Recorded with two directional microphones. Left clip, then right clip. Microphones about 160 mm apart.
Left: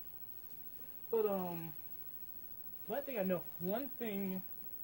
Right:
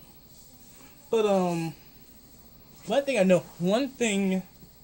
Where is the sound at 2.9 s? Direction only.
10° right (ahead or behind).